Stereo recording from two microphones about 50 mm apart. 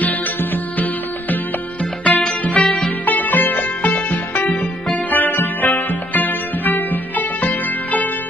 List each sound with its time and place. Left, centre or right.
0.0 s music: left
2.0 s music: left
2.5 s music: centre
3.1 s music: left